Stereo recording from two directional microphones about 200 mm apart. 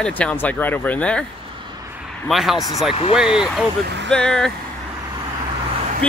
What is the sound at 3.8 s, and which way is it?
Speech, 60° right (ahead or behind).